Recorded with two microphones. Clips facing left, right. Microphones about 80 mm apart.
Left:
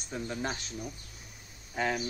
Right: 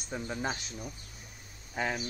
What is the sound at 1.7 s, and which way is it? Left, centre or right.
Speech, centre.